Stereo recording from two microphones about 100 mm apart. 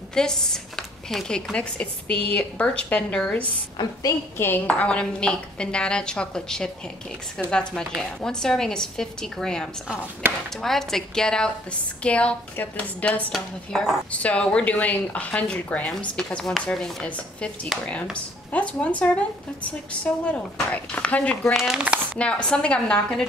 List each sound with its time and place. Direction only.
0.1 s a woman's voice: 5° left (ahead or behind)
8.2 s a woman's voice: 5° left (ahead or behind)
10.2 s speech: 20° right (ahead or behind)
10.6 s a woman's voice: 5° left (ahead or behind)
18.1 s a woman's voice: 15° left (ahead or behind)
21.5 s a woman's voice: 5° right (ahead or behind)
22.2 s a woman's voice: 10° left (ahead or behind)